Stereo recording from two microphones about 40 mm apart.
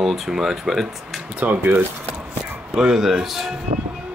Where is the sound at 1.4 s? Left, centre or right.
Right.